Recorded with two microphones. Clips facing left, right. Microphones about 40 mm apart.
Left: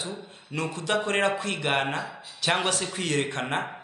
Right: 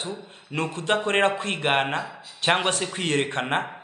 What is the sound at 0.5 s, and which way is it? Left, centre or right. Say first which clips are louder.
A man's voice: right 3 dB; right.